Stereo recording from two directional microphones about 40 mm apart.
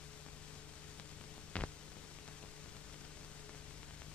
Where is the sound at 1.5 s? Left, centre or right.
Left.